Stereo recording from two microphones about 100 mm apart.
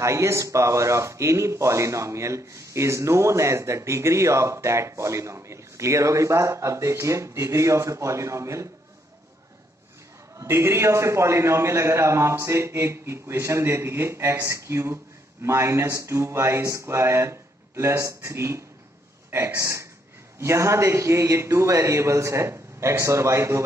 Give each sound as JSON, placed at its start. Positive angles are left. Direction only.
{"t": 0.0, "sound": "speech", "side_deg": -30}
{"t": 10.3, "sound": "speech", "side_deg": -25}